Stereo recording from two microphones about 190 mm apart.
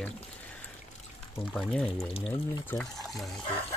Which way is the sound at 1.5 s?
5° left (ahead or behind).